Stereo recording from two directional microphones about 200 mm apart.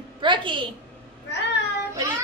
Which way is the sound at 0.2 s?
25° right (ahead or behind).